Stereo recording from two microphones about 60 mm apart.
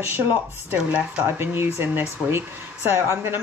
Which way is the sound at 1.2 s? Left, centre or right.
Right.